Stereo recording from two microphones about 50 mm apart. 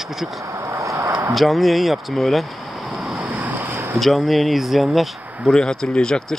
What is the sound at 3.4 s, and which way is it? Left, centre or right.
Boat, right.